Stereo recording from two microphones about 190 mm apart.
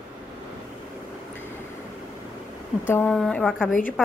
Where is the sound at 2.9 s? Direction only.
5° left (ahead or behind).